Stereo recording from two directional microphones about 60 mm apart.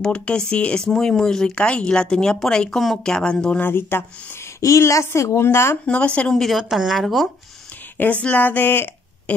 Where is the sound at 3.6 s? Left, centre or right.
Left.